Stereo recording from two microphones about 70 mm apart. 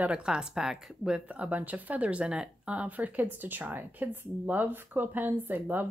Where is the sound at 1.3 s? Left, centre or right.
Right.